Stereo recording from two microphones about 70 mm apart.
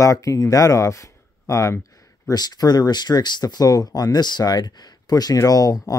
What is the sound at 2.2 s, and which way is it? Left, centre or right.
Speech, left.